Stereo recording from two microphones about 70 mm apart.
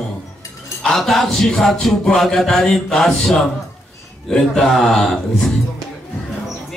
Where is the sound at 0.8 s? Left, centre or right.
Centre.